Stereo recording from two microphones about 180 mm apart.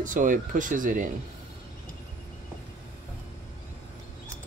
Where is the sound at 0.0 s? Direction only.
45° right (ahead or behind).